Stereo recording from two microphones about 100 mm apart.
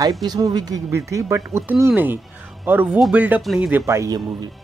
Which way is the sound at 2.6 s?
20° right (ahead or behind).